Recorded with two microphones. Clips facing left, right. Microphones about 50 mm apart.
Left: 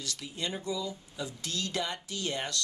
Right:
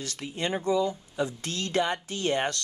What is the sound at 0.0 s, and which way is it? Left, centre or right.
Speech, right.